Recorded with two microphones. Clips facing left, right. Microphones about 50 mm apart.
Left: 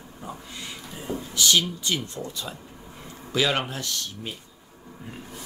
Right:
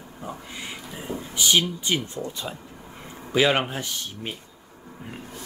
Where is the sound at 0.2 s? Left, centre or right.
Centre.